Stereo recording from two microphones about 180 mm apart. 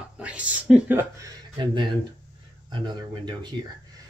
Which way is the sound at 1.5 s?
25° right (ahead or behind).